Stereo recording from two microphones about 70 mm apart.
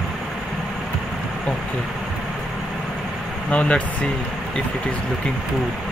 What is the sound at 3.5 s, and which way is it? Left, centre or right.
Speech, centre.